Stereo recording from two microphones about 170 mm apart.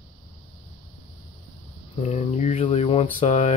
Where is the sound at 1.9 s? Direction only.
40° left (ahead or behind).